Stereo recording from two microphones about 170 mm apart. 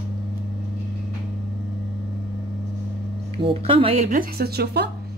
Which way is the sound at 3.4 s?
35° right (ahead or behind).